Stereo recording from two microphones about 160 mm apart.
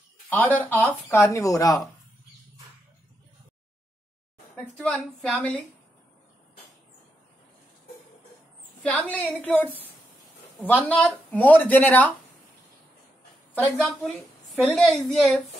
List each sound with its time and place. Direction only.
0.6 s speech: 10° left (ahead or behind)
4.6 s a woman's voice: centre (ahead or behind)
8.8 s speech: 10° left (ahead or behind)
13.6 s a woman's voice: centre (ahead or behind)